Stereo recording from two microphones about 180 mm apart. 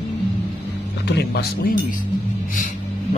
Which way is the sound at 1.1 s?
65° left (ahead or behind).